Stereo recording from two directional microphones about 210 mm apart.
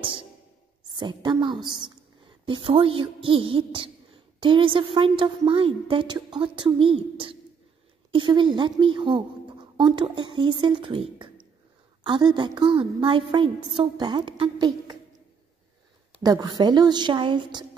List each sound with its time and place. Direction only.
0.0 s a sound: 25° right (ahead or behind)
0.9 s a woman's voice: 20° right (ahead or behind)
16.2 s a woman's voice: 20° right (ahead or behind)